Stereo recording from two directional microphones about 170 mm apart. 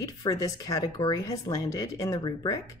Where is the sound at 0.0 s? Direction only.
20° left (ahead or behind).